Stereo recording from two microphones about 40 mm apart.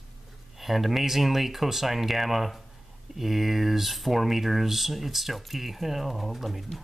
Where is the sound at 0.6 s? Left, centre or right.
Centre.